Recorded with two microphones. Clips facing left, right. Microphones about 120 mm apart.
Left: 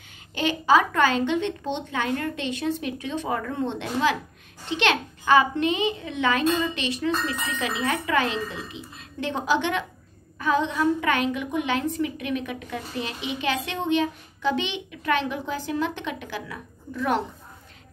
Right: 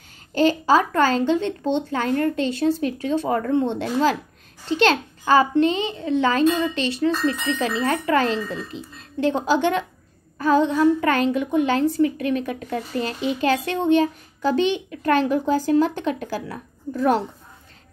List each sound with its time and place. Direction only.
0.3 s speech: 40° right (ahead or behind)